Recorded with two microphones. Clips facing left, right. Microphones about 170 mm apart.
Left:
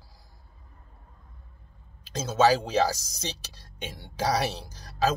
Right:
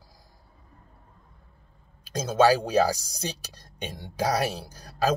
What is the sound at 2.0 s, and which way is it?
Speech, 10° right (ahead or behind).